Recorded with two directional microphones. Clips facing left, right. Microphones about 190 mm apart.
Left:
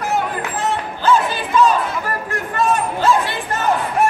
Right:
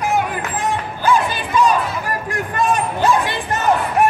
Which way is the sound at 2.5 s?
15° right (ahead or behind).